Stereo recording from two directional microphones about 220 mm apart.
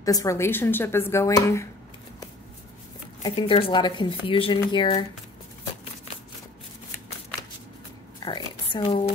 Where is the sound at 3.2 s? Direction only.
20° left (ahead or behind).